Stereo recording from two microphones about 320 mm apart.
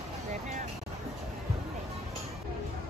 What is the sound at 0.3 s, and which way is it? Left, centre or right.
Vehicle, right.